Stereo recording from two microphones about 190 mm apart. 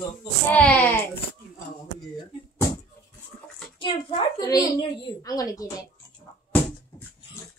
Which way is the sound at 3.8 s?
25° left (ahead or behind).